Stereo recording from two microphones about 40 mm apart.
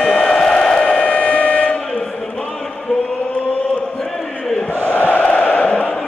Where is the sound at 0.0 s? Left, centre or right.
Left.